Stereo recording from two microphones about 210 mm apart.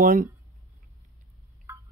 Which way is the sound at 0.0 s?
40° right (ahead or behind).